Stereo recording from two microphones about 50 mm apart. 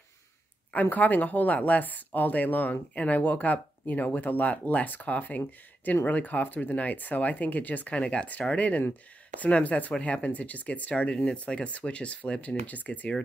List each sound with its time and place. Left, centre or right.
0.9 s speech: left